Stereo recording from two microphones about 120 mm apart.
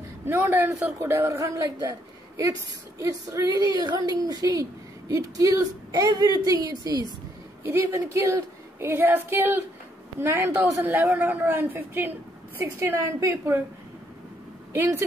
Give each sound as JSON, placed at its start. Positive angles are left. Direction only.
{"t": 0.2, "sound": "a woman's voice", "side_deg": -20}
{"t": 7.6, "sound": "a woman's voice", "side_deg": -20}
{"t": 14.7, "sound": "speech", "side_deg": -20}